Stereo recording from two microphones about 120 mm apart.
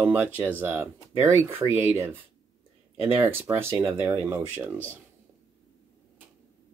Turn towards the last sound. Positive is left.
turn(degrees=-20)  # may be behind; listen again after turning